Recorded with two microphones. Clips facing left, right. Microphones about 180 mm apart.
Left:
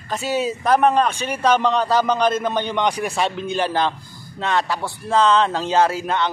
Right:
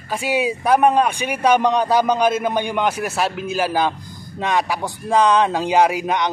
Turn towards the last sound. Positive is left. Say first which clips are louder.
# right 2 dB
turn(degrees=-15)  # may be behind; listen again after turning